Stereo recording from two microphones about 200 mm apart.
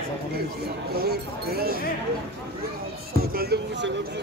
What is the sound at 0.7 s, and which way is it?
Speech, 50° right (ahead or behind).